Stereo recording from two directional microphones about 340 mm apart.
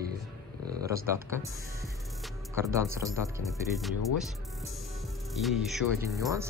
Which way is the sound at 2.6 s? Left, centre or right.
Centre.